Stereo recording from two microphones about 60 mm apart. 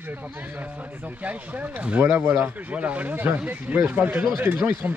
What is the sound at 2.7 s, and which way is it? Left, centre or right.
Speech, right.